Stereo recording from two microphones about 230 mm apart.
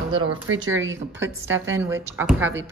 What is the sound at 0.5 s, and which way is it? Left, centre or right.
Speech, right.